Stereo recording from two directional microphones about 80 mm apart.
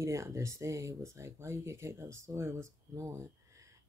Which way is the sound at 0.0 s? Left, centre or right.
Right.